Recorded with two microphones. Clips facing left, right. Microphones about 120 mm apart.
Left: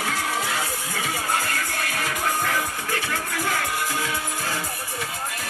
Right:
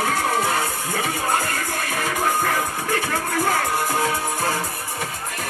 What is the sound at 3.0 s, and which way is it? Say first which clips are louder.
Music: right 5 dB; 45° right (ahead or behind).